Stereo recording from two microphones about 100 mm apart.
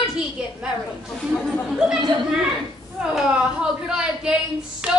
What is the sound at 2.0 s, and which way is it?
Speech, 50° right (ahead or behind).